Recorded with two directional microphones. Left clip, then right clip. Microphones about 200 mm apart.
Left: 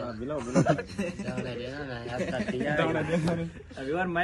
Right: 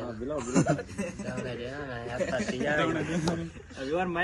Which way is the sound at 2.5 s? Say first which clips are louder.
Left 1 dB; 20° right (ahead or behind).